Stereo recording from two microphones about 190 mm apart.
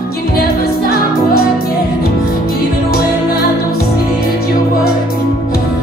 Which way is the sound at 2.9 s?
55° left (ahead or behind).